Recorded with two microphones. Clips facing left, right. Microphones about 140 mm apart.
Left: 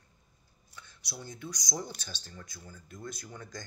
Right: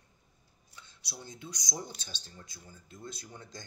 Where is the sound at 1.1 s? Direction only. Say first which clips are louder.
Left 3 dB; 25° right (ahead or behind).